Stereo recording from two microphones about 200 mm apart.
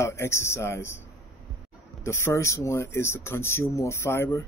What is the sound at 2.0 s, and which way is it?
Speech, 15° left (ahead or behind).